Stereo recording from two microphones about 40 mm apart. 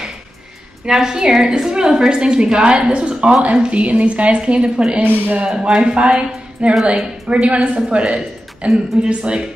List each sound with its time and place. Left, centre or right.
0.8 s a woman's voice: centre
5.0 s speech: right
5.6 s a woman's voice: right